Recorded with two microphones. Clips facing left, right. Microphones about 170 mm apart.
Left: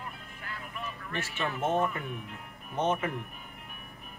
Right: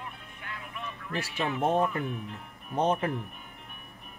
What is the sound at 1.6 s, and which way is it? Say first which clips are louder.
Speech: right 2 dB; 35° right (ahead or behind).